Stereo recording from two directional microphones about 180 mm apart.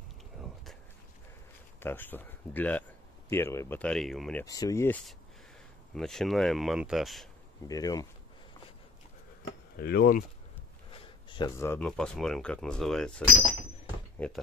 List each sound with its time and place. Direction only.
1.8 s speech: 10° left (ahead or behind)
4.5 s speech: 20° left (ahead or behind)
5.9 s speech: centre (ahead or behind)
7.6 s speech: 20° left (ahead or behind)
9.8 s speech: 60° left (ahead or behind)
10.9 s a sound: 25° left (ahead or behind)
11.5 s speech: 10° left (ahead or behind)
14.2 s speech: 10° left (ahead or behind)